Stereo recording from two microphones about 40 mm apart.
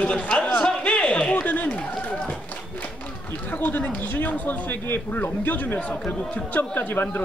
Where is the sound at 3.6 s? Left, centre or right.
Left.